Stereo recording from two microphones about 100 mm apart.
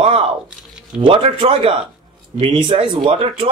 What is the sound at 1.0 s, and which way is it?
Speech, 65° right (ahead or behind).